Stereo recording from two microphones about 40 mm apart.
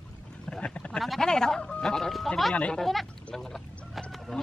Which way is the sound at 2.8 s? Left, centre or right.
Centre.